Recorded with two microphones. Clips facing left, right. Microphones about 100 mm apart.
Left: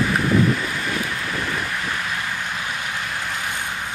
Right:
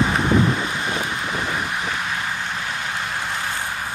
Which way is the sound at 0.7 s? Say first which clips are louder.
Right 1 dB; 25° right (ahead or behind).